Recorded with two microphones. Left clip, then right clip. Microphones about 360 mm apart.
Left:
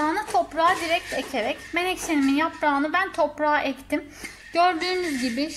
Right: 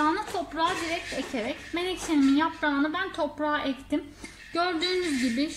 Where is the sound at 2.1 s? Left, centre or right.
Left.